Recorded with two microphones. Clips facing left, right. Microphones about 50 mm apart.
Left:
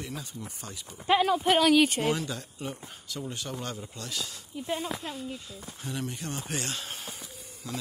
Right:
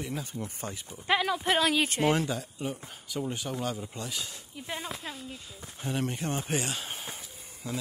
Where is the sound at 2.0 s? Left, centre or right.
Right.